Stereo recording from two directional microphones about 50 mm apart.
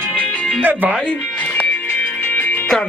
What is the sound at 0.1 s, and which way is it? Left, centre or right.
Music, centre.